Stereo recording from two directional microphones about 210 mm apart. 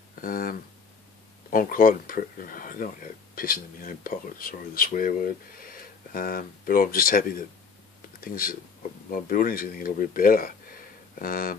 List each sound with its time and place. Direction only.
0.2 s speech: 40° left (ahead or behind)